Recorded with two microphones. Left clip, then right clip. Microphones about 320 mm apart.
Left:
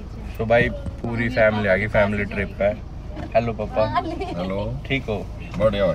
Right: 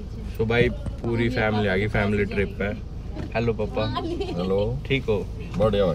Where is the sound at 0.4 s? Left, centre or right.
Centre.